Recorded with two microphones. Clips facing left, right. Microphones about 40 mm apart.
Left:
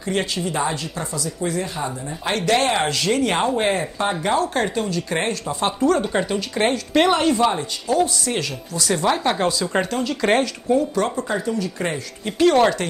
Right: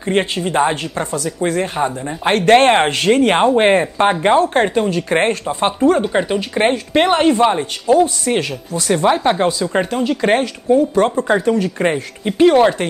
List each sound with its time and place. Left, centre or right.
0.0 s speech: right; by 10.8 s centre
11.0 s speech: right
11.8 s speech: right